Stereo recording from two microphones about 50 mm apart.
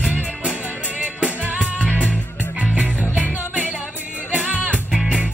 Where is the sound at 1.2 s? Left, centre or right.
Right.